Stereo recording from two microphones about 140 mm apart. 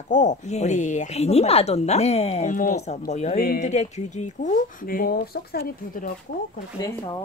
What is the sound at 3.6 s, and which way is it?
Speech, 55° left (ahead or behind).